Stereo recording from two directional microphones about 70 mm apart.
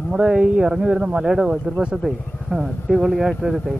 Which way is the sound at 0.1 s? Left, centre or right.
Centre.